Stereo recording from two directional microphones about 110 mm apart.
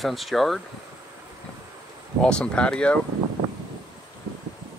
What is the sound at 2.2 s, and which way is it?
Speech, 10° left (ahead or behind).